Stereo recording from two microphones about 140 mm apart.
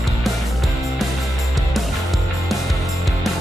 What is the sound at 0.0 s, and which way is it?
Music, centre (ahead or behind).